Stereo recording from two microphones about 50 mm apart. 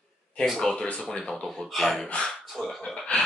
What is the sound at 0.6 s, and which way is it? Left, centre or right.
Speech, centre.